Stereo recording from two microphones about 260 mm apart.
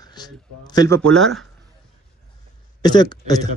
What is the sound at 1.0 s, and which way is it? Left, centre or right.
Speech, centre.